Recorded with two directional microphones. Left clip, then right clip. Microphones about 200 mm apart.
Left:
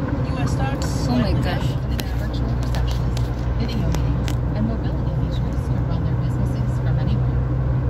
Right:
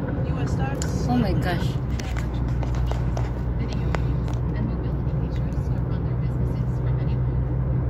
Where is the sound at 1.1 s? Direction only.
25° right (ahead or behind).